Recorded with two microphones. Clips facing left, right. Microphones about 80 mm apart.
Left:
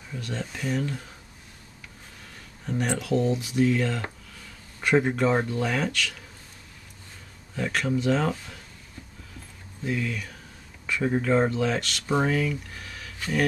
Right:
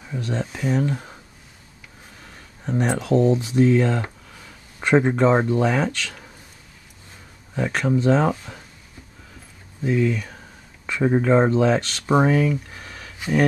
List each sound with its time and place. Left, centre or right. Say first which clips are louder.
0.1 s speech: right 6 dB; right
2.6 s speech: right 5 dB; right
7.5 s speech: right 5 dB; right
9.8 s speech: right 8 dB; right